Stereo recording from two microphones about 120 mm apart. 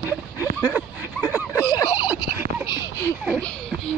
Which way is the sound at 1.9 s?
15° right (ahead or behind).